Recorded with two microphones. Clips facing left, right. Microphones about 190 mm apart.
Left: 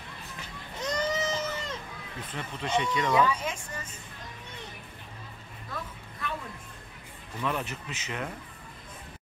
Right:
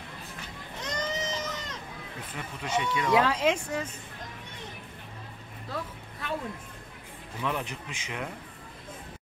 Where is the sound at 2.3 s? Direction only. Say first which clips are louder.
Left 2 dB; 10° right (ahead or behind).